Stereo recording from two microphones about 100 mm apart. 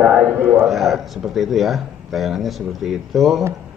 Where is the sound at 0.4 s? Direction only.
20° right (ahead or behind).